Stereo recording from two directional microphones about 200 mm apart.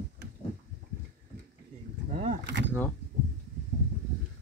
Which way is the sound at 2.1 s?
35° right (ahead or behind).